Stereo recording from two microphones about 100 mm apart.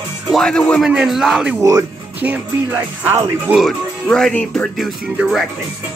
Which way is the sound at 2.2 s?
15° right (ahead or behind).